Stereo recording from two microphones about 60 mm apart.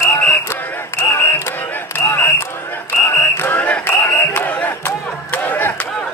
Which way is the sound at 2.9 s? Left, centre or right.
Left.